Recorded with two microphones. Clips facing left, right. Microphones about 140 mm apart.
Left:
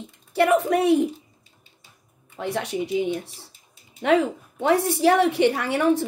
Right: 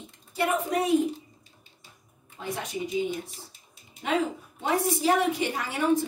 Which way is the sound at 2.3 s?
70° left (ahead or behind).